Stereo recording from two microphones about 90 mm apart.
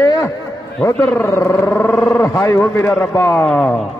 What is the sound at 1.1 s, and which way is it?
Speech, 30° left (ahead or behind).